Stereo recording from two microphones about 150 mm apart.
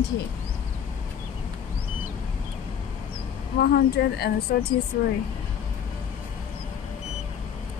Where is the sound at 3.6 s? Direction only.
90° left.